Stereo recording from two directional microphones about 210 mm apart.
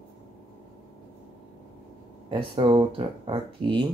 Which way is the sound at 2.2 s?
25° right (ahead or behind).